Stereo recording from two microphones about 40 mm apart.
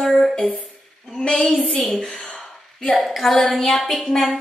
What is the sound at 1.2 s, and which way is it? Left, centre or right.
Speech, left.